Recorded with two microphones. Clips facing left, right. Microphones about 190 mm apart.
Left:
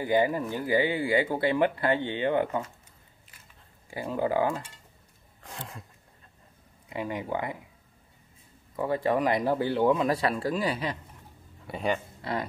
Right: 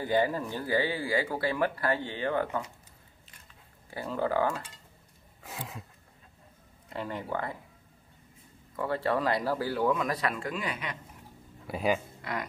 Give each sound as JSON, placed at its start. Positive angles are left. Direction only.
{"t": 0.0, "sound": "speech", "side_deg": 15}
{"t": 3.9, "sound": "speech", "side_deg": 15}
{"t": 5.4, "sound": "a sound", "side_deg": -5}
{"t": 6.9, "sound": "speech", "side_deg": 10}
{"t": 8.7, "sound": "speech", "side_deg": 15}
{"t": 11.6, "sound": "speech", "side_deg": -5}
{"t": 12.2, "sound": "speech", "side_deg": 30}